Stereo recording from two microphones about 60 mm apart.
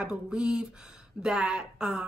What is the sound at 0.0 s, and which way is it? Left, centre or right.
Speech, centre.